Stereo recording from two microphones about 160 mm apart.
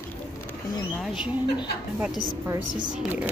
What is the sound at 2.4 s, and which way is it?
Speech, 25° right (ahead or behind).